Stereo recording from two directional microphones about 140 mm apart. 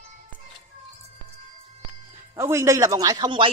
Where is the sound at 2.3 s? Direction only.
20° right (ahead or behind); by 3.5 s 35° right (ahead or behind).